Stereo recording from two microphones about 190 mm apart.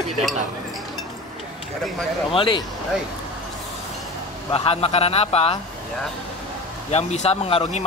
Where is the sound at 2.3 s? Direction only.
25° left (ahead or behind).